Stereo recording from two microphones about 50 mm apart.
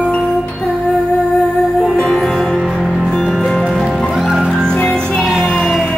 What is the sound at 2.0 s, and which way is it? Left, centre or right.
Music, centre.